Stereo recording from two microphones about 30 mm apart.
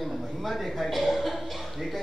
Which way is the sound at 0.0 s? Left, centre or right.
Centre.